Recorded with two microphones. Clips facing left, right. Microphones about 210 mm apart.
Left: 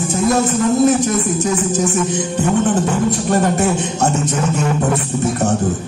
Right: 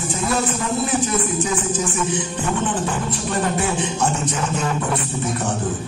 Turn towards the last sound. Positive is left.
turn(degrees=45)  # may be behind; listen again after turning